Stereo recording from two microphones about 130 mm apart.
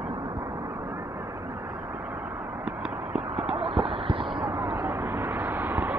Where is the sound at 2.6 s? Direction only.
5° right (ahead or behind).